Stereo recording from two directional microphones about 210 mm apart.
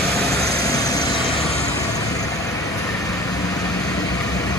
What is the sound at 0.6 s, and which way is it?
Vehicle, 15° left (ahead or behind).